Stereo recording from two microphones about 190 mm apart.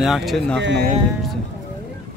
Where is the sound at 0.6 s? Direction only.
65° right (ahead or behind).